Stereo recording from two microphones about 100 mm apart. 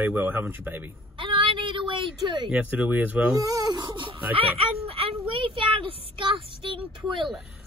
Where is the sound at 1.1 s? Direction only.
60° right (ahead or behind).